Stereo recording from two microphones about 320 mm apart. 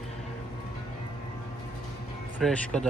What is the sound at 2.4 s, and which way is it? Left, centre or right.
Speech, centre.